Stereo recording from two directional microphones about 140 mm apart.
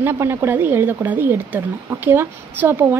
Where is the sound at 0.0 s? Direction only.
15° right (ahead or behind).